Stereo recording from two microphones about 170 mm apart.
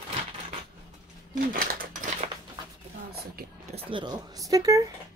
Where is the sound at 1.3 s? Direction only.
55° right (ahead or behind).